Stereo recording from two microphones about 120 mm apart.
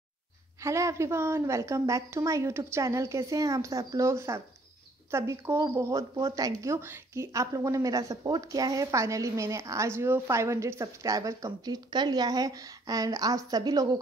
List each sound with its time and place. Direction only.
0.6 s a woman's voice: 25° right (ahead or behind)